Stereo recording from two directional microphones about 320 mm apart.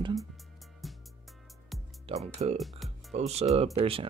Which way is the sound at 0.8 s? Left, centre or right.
Centre.